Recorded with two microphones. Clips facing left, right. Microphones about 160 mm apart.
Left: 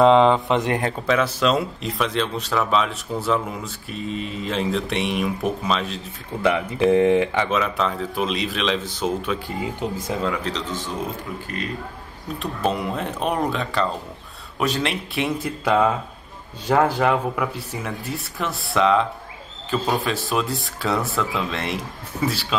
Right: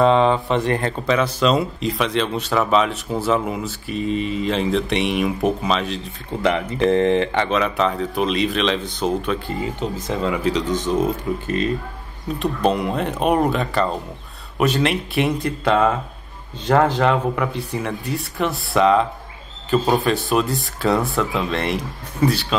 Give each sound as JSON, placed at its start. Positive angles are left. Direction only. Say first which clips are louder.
{"t": 0.0, "sound": "speech", "louder": "left 1 dB", "side_deg": 15}
{"t": 10.2, "sound": "speech", "louder": "right 9 dB", "side_deg": -10}
{"t": 12.4, "sound": "speech", "louder": "right 4 dB", "side_deg": 0}